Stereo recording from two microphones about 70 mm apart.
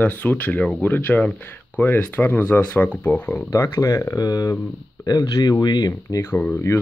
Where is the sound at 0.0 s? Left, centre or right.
Left.